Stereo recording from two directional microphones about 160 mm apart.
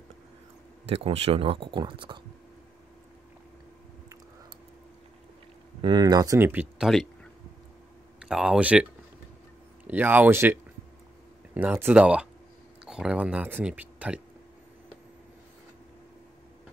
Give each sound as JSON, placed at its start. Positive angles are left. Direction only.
{"t": 0.8, "sound": "speech", "side_deg": -40}
{"t": 5.8, "sound": "speech", "side_deg": -30}
{"t": 8.2, "sound": "speech", "side_deg": -5}
{"t": 9.8, "sound": "speech", "side_deg": -10}